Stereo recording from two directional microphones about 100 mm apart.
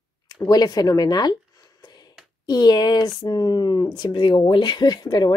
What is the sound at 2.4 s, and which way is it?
Speech, 45° left (ahead or behind).